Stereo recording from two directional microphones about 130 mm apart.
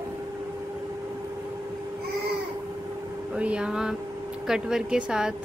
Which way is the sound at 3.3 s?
10° right (ahead or behind).